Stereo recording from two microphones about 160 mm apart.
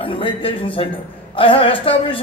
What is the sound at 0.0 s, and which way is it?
A woman's voice, 35° left (ahead or behind).